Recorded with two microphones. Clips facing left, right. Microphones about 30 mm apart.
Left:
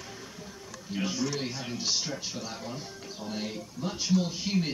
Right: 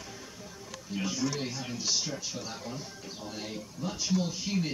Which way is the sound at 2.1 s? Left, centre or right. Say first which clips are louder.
Left 1 dB; centre.